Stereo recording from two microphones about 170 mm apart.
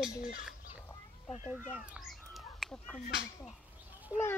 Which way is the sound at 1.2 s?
40° left (ahead or behind).